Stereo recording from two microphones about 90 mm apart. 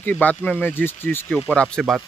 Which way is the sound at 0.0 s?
15° left (ahead or behind).